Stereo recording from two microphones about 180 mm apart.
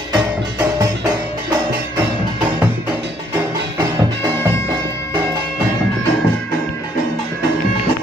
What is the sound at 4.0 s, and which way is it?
Music, 25° right (ahead or behind).